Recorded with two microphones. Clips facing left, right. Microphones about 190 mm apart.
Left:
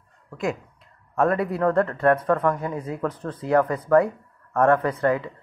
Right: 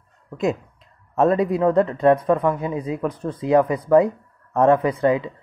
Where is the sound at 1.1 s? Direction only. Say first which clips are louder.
Right 4 dB; 20° right (ahead or behind).